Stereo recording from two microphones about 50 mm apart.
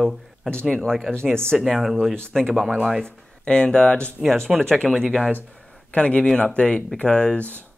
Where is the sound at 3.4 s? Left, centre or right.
Centre.